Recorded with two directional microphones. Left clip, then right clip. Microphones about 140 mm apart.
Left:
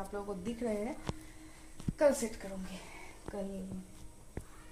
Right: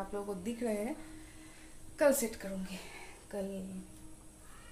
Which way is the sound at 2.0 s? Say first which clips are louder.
Even; 15° right (ahead or behind).